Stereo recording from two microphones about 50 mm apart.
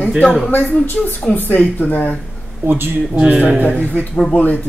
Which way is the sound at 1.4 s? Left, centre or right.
Left.